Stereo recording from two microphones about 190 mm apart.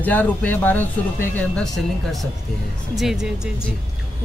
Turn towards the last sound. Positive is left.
turn(degrees=0)  # may be behind; listen again after turning